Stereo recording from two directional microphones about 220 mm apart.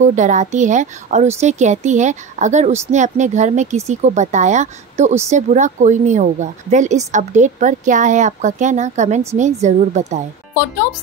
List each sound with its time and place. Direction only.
0.0 s a woman's voice: 35° right (ahead or behind)